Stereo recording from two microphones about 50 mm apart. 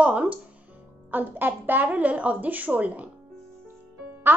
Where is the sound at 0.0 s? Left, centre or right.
Right.